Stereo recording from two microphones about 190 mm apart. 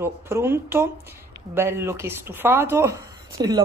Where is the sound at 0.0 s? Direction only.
10° right (ahead or behind).